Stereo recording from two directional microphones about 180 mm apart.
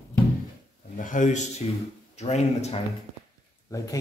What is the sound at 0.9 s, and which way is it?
Speech, 45° left (ahead or behind).